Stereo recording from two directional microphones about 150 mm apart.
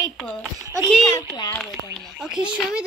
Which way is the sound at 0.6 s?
20° right (ahead or behind).